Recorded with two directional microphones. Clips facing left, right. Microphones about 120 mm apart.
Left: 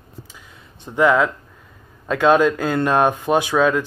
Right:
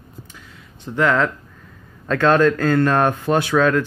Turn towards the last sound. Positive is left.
turn(degrees=15)  # may be behind; listen again after turning